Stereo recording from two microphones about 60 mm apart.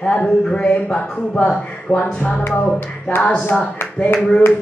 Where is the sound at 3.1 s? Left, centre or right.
Left.